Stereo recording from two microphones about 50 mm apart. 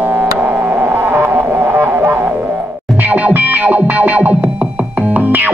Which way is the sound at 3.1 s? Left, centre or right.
Right.